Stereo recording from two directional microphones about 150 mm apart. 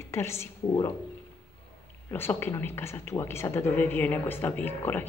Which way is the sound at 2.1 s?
15° left (ahead or behind).